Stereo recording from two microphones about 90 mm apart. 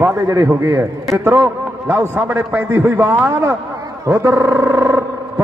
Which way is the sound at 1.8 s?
25° right (ahead or behind).